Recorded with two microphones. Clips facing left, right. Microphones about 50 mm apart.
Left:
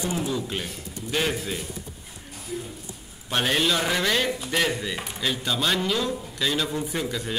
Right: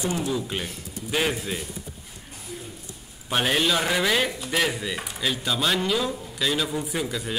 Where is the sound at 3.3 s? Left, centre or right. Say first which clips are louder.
Right 1 dB; centre.